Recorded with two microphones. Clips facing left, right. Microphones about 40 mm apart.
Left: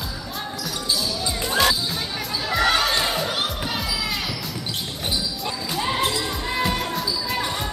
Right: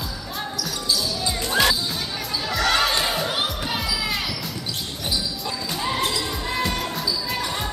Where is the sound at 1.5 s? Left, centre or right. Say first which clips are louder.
Even; centre.